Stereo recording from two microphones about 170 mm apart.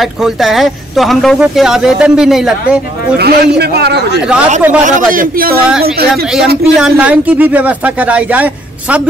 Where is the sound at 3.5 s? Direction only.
70° right (ahead or behind).